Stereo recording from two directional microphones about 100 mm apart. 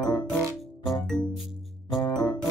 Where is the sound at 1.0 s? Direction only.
5° left (ahead or behind).